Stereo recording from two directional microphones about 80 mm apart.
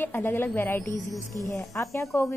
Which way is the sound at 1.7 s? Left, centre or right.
Left.